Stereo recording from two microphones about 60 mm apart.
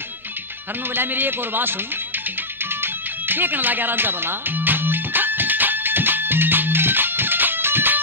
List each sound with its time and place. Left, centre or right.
0.9 s a man's voice: right
2.6 s music: right